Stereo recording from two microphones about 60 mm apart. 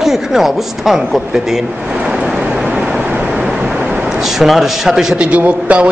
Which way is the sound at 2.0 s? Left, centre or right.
Centre.